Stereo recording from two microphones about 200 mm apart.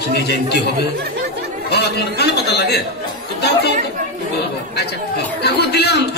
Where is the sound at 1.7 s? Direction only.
55° left (ahead or behind).